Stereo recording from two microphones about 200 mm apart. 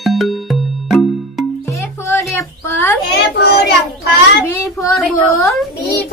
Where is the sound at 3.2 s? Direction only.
55° left (ahead or behind).